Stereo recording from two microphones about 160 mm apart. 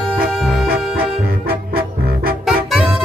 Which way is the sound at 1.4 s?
70° right (ahead or behind).